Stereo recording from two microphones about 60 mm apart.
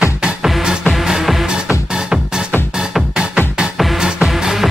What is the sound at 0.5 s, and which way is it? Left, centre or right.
Music, centre.